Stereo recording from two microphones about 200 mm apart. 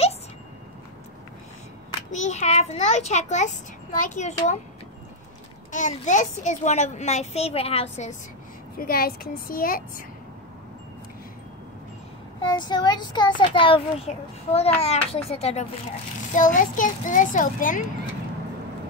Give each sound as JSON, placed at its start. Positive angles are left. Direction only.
{"t": 2.1, "sound": "a child's voice", "side_deg": 35}
{"t": 5.7, "sound": "a child's voice", "side_deg": 40}
{"t": 8.7, "sound": "a woman's voice", "side_deg": 50}
{"t": 12.4, "sound": "a child's voice", "side_deg": 20}